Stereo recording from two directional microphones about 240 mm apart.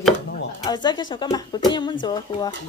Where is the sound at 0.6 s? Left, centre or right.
Centre.